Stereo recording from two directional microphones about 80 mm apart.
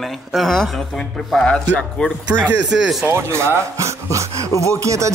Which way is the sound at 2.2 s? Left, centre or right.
Centre.